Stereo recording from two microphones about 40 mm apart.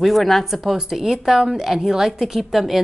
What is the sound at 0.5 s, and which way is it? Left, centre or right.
A woman's voice, centre.